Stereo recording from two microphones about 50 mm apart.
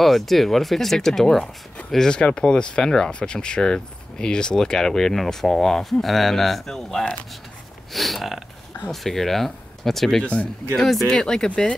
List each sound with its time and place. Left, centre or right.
0.0 s speech: centre
10.2 s speech: left
10.8 s speech: centre
11.1 s speech: centre